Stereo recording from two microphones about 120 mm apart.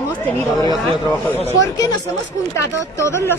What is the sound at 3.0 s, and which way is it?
Speech, 25° left (ahead or behind).